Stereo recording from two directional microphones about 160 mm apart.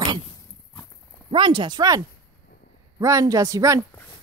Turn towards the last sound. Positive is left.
turn(degrees=-20)  # may be behind; listen again after turning